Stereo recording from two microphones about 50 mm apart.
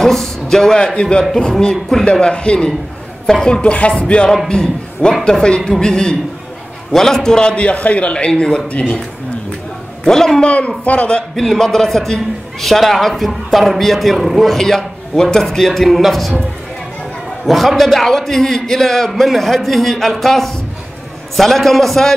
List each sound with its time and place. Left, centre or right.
0.0 s a man's voice: centre; by 8.3 s left
8.3 s a man's voice: centre
10.0 s a man's voice: centre
10.8 s a man's voice: left
11.3 s a man's voice: centre
17.5 s a man's voice: centre